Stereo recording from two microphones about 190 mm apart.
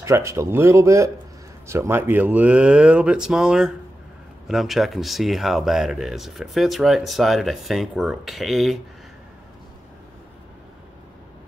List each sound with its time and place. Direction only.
0.0 s speech: 15° right (ahead or behind); by 8.7 s centre (ahead or behind)